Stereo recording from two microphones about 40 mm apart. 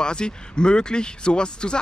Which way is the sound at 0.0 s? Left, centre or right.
Left.